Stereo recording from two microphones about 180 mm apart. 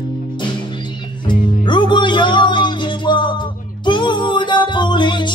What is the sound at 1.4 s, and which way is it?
Music, 25° left (ahead or behind).